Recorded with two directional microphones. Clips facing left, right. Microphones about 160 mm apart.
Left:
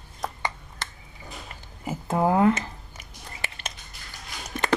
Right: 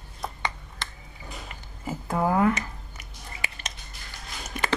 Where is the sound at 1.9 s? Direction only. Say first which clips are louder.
Left 2 dB; 20° left (ahead or behind).